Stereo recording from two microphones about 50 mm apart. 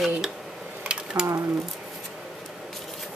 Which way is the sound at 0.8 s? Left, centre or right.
Right.